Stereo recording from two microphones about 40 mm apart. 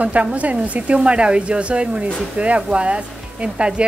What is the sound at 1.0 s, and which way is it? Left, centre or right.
Speech, right.